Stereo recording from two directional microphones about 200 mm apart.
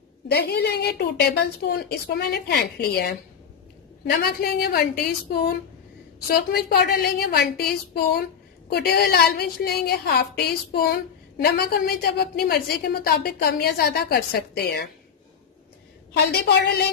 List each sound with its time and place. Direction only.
0.3 s a woman's voice: 55° left (ahead or behind)
16.1 s a woman's voice: 50° left (ahead or behind)